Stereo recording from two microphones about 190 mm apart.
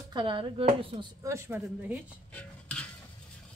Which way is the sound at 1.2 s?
15° right (ahead or behind).